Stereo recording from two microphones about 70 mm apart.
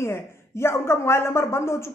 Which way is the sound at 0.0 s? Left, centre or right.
Left.